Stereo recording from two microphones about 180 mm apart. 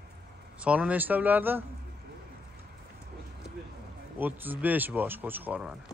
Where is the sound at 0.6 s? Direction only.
5° right (ahead or behind).